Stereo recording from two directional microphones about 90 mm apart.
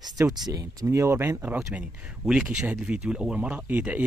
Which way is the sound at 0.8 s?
30° right (ahead or behind).